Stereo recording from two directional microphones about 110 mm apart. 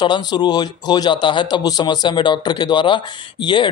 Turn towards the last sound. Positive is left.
turn(degrees=45)  # may be behind; listen again after turning